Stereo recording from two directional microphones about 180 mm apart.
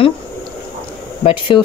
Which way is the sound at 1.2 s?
30° left (ahead or behind).